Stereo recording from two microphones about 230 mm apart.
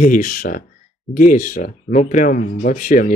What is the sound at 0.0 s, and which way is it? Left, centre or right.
Speech, left.